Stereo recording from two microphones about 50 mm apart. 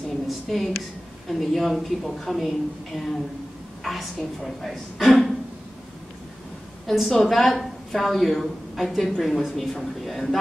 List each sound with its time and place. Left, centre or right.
0.3 s a sound: centre
1.3 s a woman's voice: centre
6.9 s a woman's voice: centre